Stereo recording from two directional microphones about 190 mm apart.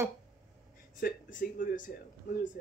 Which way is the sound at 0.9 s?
45° left (ahead or behind).